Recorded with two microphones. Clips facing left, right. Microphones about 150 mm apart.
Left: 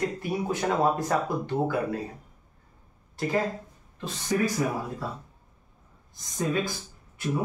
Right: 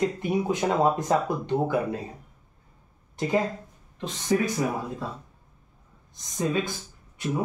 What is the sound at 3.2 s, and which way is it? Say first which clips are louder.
Speech: right 1 dB; 20° right (ahead or behind).